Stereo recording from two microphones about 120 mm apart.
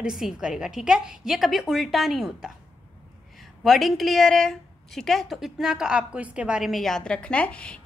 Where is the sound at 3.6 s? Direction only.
Centre (ahead or behind).